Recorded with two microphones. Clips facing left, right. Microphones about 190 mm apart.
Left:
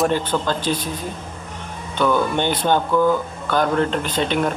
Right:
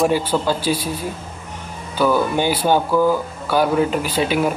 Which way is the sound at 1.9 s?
5° right (ahead or behind).